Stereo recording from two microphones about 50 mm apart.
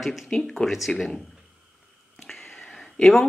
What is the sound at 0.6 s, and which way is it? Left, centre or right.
Speech, centre.